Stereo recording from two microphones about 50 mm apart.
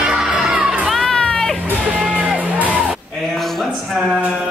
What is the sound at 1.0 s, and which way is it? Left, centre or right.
Music, centre.